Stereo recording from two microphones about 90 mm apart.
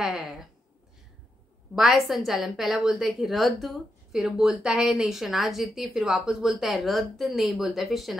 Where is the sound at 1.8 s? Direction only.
Centre (ahead or behind).